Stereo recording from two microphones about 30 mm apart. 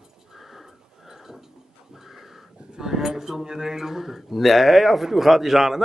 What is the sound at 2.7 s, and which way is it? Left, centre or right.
A man's voice, centre.